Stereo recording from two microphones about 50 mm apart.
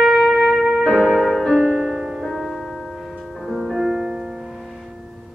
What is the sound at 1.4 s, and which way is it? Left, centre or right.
Music, centre.